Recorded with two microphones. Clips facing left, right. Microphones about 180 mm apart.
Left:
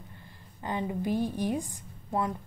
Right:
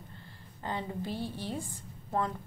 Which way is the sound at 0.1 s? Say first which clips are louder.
Even; 15° left (ahead or behind).